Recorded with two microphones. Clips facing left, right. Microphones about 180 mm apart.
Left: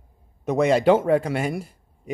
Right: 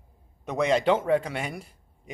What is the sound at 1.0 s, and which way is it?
Speech, 45° left (ahead or behind).